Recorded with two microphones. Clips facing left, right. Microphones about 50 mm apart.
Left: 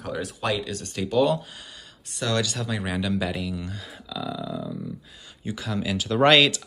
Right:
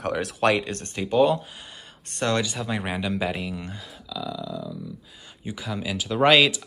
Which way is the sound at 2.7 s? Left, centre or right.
Right.